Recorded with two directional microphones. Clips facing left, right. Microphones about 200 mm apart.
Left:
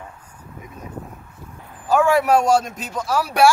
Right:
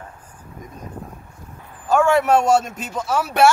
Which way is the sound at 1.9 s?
Centre (ahead or behind).